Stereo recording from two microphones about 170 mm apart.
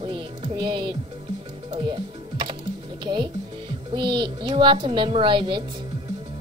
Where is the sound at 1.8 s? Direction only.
30° right (ahead or behind).